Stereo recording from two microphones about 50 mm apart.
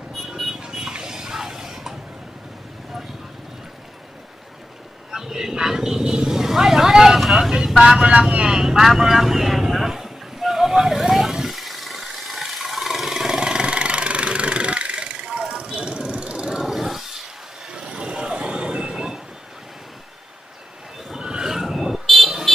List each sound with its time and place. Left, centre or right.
0.3 s a sound: centre
0.6 s a sound: centre
5.1 s vehicle: centre
7.5 s speech: centre
8.5 s vehicle: centre
15.4 s vehicle: centre
16.5 s vehicle: centre
17.6 s vehicle: centre
21.1 s vehicle: centre